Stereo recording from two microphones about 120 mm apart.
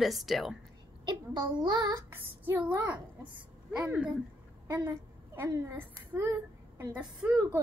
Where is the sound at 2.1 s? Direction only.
15° right (ahead or behind).